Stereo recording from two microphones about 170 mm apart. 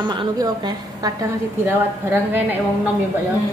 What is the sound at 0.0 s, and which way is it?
A woman's voice, 25° right (ahead or behind).